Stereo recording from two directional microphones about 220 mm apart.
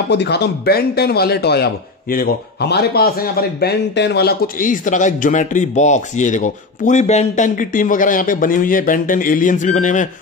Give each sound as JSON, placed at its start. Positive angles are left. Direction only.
{"t": 0.1, "sound": "speech", "side_deg": 50}